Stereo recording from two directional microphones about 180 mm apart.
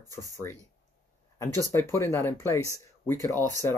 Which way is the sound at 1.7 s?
15° left (ahead or behind).